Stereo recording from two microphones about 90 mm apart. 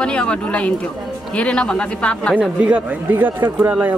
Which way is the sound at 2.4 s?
15° right (ahead or behind).